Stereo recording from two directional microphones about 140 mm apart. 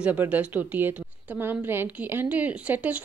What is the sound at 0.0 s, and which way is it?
A woman's voice, 10° right (ahead or behind).